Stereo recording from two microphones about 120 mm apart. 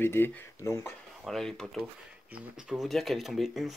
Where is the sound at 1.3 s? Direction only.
5° left (ahead or behind).